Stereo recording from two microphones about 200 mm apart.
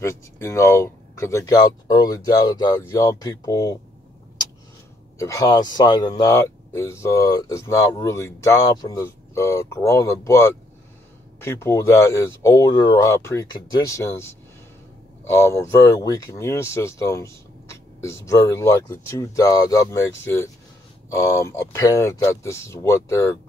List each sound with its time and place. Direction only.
0.0 s speech: 15° left (ahead or behind)
5.2 s speech: 15° left (ahead or behind)